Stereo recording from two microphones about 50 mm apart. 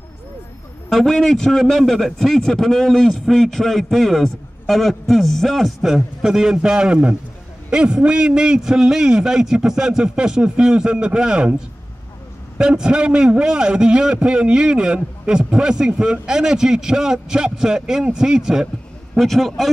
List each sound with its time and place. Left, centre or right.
0.8 s a man's voice: centre
12.5 s a man's voice: centre
19.1 s a man's voice: centre